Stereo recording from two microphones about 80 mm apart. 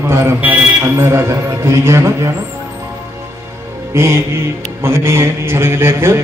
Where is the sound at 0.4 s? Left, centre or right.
Right.